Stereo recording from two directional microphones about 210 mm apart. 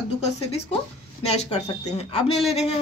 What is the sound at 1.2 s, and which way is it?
A woman's voice, 30° left (ahead or behind).